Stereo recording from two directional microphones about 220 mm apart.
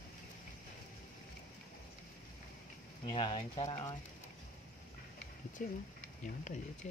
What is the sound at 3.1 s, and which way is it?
Speech, 25° left (ahead or behind).